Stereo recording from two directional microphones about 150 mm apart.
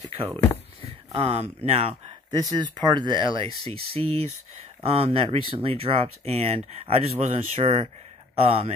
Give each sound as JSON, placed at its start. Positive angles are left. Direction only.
{"t": 1.1, "sound": "speech", "side_deg": -45}
{"t": 2.3, "sound": "speech", "side_deg": -30}